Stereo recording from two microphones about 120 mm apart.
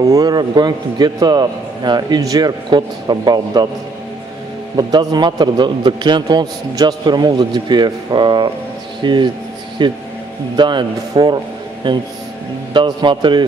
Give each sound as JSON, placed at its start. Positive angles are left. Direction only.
{"t": 0.0, "sound": "a man's voice", "side_deg": -30}
{"t": 4.7, "sound": "a man's voice", "side_deg": -35}